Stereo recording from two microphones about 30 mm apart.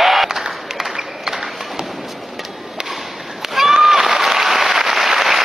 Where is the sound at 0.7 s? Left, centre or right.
Centre.